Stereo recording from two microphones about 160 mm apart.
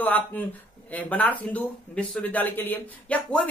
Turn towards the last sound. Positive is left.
turn(degrees=10)  # may be behind; listen again after turning